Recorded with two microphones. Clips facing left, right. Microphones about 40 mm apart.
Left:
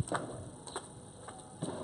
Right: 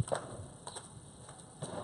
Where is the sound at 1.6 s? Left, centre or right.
Left.